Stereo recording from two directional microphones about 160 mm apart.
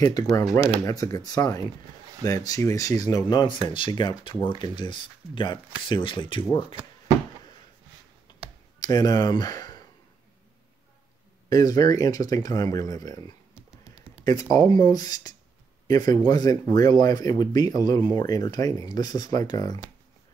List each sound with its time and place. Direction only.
0.0 s speech: 20° left (ahead or behind)
8.3 s finger snapping: 30° left (ahead or behind)
8.7 s speech: 25° left (ahead or behind)
11.4 s speech: 20° left (ahead or behind)
14.2 s speech: 25° left (ahead or behind)